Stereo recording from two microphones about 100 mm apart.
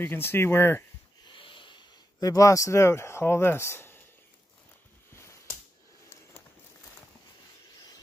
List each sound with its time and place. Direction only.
0.0 s speech: 25° left (ahead or behind)
1.2 s wheeze: 55° left (ahead or behind)
2.1 s speech: 35° left (ahead or behind)